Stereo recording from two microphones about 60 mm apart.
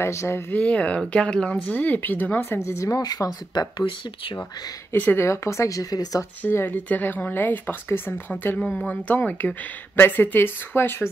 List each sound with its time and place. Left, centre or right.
0.0 s speech: left
0.5 s speech: left
1.6 s speech: left
2.6 s speech: left
4.9 s speech: left
5.2 s speech: left
6.5 s speech: left
8.5 s speech: centre
8.8 s speech: left